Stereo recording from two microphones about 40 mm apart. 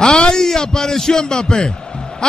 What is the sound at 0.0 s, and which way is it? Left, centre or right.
A man's voice, centre.